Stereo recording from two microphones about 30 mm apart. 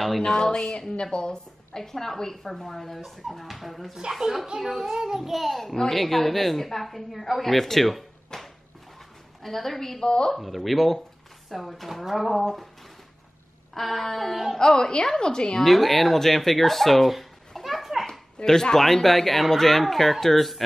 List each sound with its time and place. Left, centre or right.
0.2 s a woman's voice: left
1.8 s a woman's voice: centre
4.6 s a child's voice: centre
5.2 s a woman's voice: centre
8.3 s a sound: centre
9.4 s a woman's voice: centre
10.0 s speech: left
10.3 s speech: centre
13.7 s speech: centre
14.6 s speech: left
15.6 s speech: centre
17.6 s children playing: centre
18.4 s a woman's voice: centre